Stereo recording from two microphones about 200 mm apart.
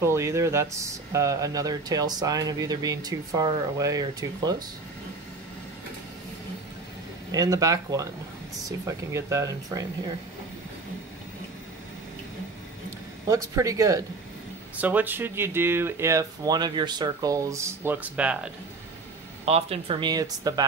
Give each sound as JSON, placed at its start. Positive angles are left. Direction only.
{"t": 0.0, "sound": "speech", "side_deg": -15}
{"t": 7.2, "sound": "speech", "side_deg": -20}
{"t": 13.3, "sound": "speech", "side_deg": -15}
{"t": 19.4, "sound": "speech", "side_deg": -30}